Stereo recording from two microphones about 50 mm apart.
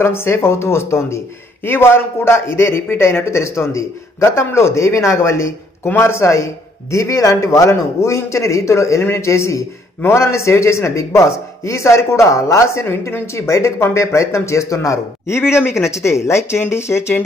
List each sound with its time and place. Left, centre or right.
0.0 s a man's voice: left
1.6 s a man's voice: left
9.0 s a man's voice: left
12.9 s a man's voice: left
13.9 s a man's voice: left
15.5 s a man's voice: left